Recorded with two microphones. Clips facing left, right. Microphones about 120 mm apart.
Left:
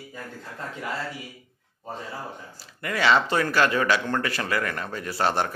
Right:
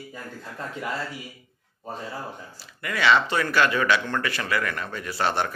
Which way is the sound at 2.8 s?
35° left (ahead or behind).